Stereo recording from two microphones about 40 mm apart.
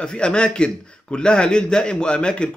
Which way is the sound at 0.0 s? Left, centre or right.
Left.